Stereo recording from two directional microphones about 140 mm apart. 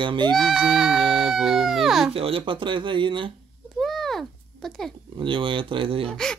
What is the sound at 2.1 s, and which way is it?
Speech, 40° right (ahead or behind).